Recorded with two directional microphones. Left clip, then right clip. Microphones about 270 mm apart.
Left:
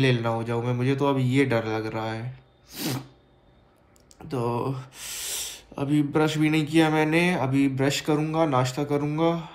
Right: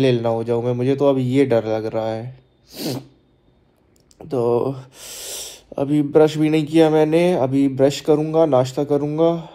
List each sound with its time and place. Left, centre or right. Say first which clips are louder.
0.0 s a man's voice: right 7 dB; centre
4.2 s a man's voice: right 9 dB; centre